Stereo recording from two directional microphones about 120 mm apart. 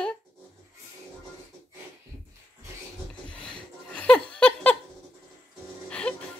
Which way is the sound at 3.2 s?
10° left (ahead or behind).